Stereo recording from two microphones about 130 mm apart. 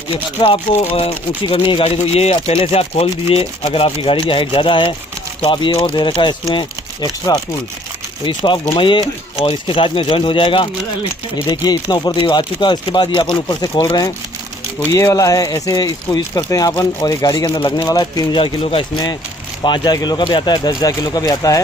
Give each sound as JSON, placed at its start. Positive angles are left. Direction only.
{"t": 0.4, "sound": "speech", "side_deg": 45}